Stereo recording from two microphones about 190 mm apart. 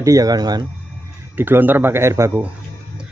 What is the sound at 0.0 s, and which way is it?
Speech, 20° right (ahead or behind).